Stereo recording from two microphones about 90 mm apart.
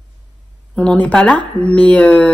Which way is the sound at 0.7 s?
15° left (ahead or behind).